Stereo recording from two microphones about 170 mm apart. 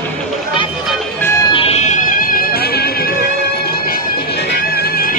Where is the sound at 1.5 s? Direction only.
35° left (ahead or behind).